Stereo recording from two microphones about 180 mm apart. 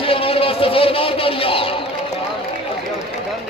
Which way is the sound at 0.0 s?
30° left (ahead or behind).